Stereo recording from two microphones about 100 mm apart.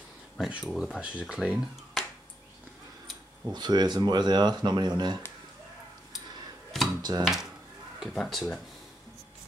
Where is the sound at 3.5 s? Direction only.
45° right (ahead or behind).